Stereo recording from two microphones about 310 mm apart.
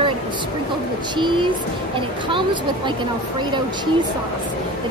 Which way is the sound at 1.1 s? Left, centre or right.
Centre.